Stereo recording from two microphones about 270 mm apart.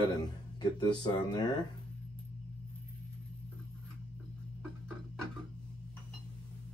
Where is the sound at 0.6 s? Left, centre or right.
Centre.